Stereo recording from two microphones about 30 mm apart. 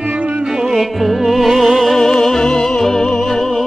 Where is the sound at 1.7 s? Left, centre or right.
Centre; by 3.4 s left.